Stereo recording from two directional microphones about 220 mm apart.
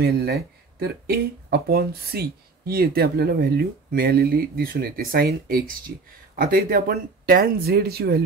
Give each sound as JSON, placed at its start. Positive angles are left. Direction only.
{"t": 0.0, "sound": "speech", "side_deg": -45}